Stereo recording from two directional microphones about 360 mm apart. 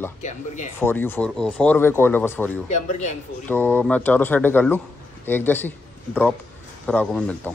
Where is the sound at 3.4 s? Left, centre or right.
Centre.